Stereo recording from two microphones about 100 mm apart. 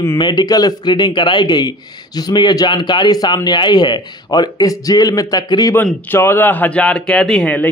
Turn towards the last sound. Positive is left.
turn(degrees=5)  # may be behind; listen again after turning